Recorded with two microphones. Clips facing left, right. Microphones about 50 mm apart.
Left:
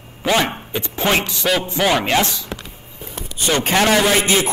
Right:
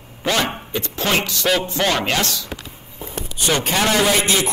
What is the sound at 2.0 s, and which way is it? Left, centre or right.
Speech, centre.